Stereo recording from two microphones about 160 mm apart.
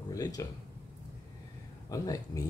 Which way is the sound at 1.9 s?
20° left (ahead or behind).